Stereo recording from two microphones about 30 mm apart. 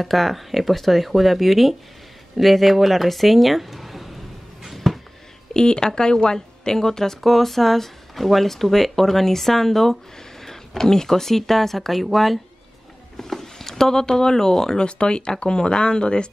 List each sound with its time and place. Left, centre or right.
0.0 s speech: centre
4.9 s a sound: centre
5.5 s speech: left
7.2 s speech: centre
10.4 s a sound: centre
10.8 s speech: centre
13.2 s speech: centre
14.9 s speech: left